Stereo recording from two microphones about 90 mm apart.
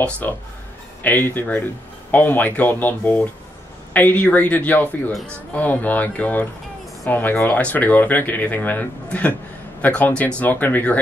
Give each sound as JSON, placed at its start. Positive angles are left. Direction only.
{"t": 0.2, "sound": "speech", "side_deg": 20}